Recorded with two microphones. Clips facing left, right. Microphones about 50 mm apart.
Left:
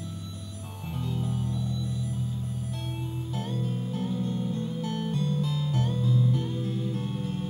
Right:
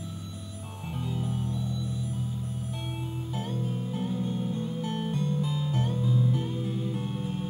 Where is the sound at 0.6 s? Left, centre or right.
Centre.